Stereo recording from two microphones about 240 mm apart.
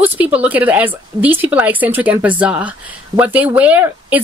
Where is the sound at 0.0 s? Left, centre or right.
Centre.